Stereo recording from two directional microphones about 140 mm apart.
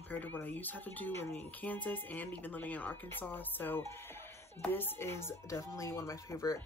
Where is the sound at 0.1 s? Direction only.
15° left (ahead or behind).